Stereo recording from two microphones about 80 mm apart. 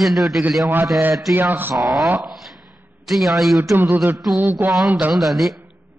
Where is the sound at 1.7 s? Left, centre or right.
Centre.